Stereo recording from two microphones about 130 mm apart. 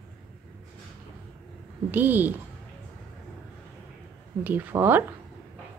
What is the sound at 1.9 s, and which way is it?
Speech, 15° right (ahead or behind).